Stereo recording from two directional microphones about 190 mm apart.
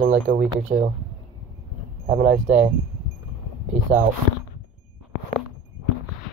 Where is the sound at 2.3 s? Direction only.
40° right (ahead or behind).